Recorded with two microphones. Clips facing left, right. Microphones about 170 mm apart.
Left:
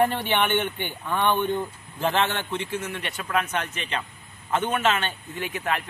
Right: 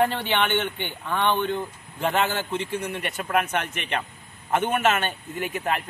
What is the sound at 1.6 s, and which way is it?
Speech, centre (ahead or behind).